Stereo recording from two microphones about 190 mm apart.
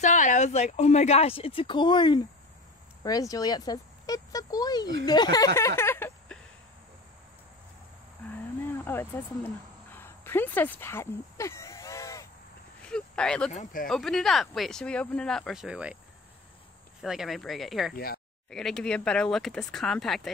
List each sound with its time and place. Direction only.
0.0 s speech: 40° left (ahead or behind); by 4.8 s 20° left (ahead or behind)
5.0 s a sound: 20° left (ahead or behind)
8.6 s speech: 10° left (ahead or behind)
9.9 s a sound: 10° left (ahead or behind)
12.8 s a sound: 5° left (ahead or behind)
13.5 s speech: 45° left (ahead or behind)
13.8 s speech: centre (ahead or behind)
17.0 s speech: centre (ahead or behind)
17.9 s speech: 50° left (ahead or behind)
18.5 s speech: centre (ahead or behind)